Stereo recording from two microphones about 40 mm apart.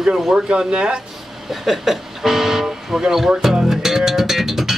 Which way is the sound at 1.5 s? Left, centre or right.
Centre.